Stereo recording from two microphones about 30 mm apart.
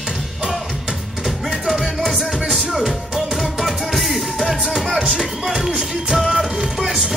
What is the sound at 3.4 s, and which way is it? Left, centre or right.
Music, centre.